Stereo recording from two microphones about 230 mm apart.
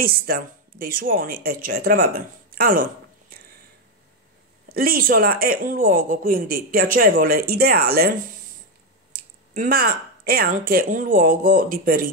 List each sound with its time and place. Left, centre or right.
0.0 s speech: right
4.6 s speech: right
9.5 s speech: right